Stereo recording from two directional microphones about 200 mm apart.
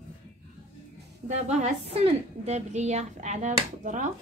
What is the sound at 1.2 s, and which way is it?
A woman's voice, 35° right (ahead or behind).